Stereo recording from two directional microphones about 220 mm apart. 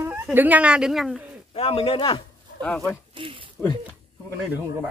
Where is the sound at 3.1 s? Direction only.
25° right (ahead or behind).